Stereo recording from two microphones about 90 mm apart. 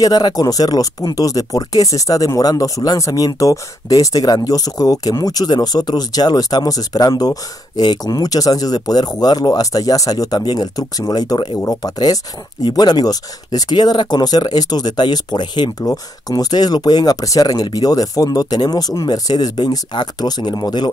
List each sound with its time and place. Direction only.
0.0 s speech: 45° left (ahead or behind)